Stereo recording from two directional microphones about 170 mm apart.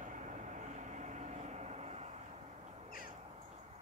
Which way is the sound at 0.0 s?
45° right (ahead or behind).